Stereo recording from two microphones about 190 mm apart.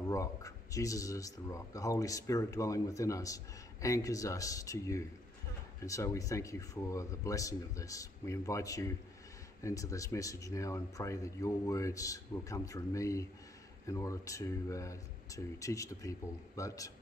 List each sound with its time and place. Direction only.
0.1 s speech: 15° left (ahead or behind)